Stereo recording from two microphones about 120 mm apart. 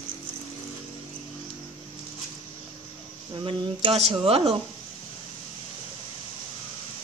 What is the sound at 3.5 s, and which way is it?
Speech, 55° right (ahead or behind).